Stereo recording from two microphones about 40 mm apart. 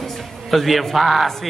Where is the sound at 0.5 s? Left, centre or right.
Centre.